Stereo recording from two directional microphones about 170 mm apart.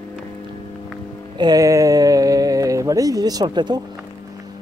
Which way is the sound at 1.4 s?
20° right (ahead or behind).